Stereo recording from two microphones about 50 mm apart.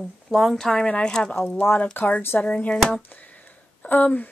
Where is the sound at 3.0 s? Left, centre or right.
Left.